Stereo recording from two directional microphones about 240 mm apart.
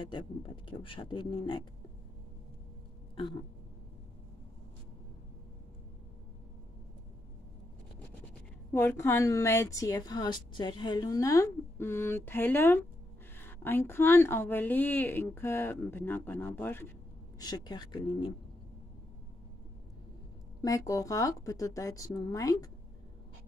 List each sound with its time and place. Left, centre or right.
0.7 s speech: left
8.7 s a woman's voice: centre
20.6 s a woman's voice: centre